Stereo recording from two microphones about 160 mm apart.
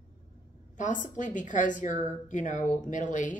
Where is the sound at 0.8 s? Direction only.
55° left (ahead or behind).